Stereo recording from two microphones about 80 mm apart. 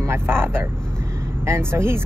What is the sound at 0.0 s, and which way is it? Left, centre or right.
Speech, right.